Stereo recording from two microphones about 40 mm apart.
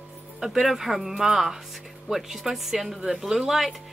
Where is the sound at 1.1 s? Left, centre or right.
Centre.